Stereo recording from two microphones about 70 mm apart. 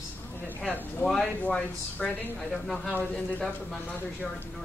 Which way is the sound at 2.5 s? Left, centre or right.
Centre.